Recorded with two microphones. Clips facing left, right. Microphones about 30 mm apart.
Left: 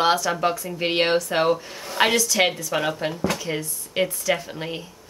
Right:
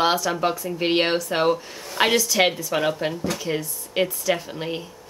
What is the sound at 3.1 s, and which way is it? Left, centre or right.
Speech, left.